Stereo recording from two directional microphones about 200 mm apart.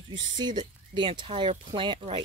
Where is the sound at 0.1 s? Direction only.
20° right (ahead or behind).